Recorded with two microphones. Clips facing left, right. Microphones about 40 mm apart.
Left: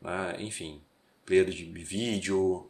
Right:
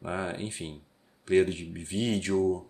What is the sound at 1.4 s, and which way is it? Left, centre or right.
Speech, left.